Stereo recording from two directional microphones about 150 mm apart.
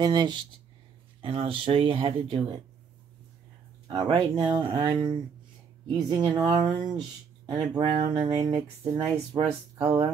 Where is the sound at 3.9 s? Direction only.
35° right (ahead or behind).